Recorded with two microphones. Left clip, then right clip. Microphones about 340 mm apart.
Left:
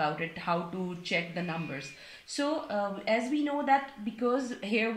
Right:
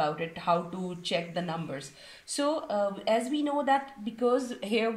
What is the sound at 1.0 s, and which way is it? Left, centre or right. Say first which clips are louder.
Speech: right 1 dB; right.